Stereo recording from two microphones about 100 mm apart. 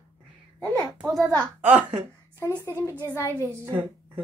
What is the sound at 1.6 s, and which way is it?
Speech, 15° right (ahead or behind).